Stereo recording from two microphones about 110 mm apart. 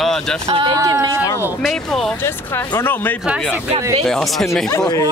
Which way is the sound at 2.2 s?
25° left (ahead or behind).